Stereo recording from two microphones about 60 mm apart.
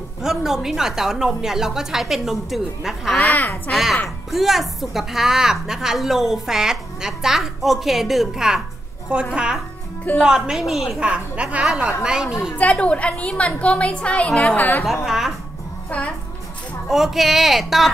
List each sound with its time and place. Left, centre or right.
0.2 s a woman's voice: centre
3.2 s a woman's voice: left
3.7 s a woman's voice: centre
11.0 s a woman's voice: centre
12.5 s a woman's voice: left
14.9 s speech: centre
16.9 s speech: centre